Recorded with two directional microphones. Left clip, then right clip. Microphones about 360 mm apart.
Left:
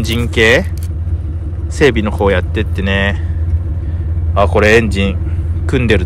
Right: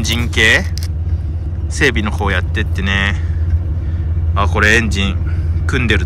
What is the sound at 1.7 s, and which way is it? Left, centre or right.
Speech, centre.